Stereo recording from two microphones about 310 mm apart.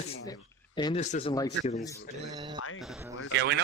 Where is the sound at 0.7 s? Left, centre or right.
Centre.